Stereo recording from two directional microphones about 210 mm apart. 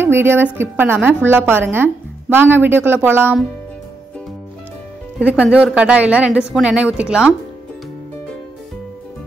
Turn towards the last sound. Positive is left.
turn(degrees=-5)  # may be behind; listen again after turning